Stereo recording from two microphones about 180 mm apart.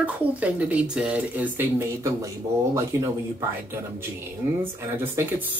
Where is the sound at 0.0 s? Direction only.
10° right (ahead or behind).